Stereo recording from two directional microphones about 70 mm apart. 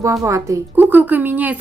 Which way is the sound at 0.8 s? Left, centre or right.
Right.